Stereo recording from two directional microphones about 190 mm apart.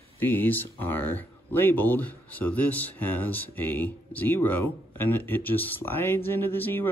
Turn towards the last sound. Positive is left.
turn(degrees=10)  # may be behind; listen again after turning